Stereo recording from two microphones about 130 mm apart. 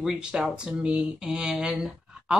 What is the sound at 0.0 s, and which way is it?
Speech, 5° right (ahead or behind).